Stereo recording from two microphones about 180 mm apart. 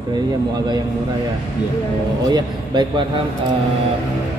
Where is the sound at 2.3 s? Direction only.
25° right (ahead or behind).